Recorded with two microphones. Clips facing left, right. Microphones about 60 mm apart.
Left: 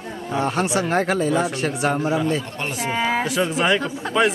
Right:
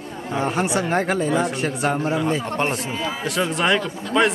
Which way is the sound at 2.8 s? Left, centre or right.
Left.